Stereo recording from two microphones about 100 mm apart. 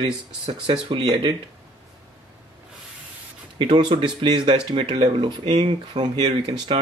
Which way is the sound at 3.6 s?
55° right (ahead or behind).